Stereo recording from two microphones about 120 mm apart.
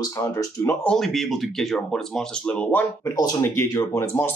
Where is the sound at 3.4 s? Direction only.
25° left (ahead or behind).